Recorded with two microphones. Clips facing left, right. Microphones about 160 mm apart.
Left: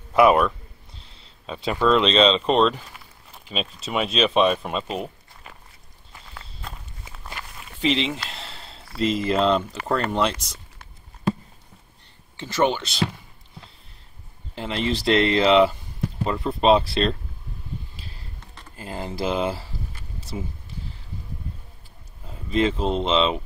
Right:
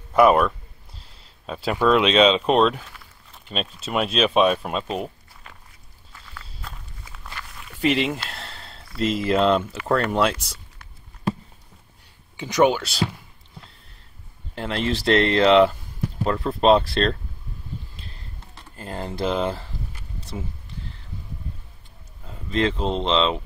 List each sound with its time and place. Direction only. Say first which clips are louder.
0.1 s speech: even; 5° left (ahead or behind)
7.1 s walk: left 1 dB; 20° left (ahead or behind)
7.8 s a sound: right 2 dB; 10° right (ahead or behind)
9.0 s speech: right 1 dB; centre (ahead or behind)
12.4 s speech: right 3 dB; 15° right (ahead or behind)
14.5 s speech: even; centre (ahead or behind)
18.8 s speech: right 1 dB; 5° left (ahead or behind)
22.2 s speech: left 1 dB; 5° left (ahead or behind)